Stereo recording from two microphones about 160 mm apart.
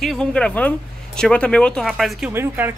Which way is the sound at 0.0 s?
5° left (ahead or behind).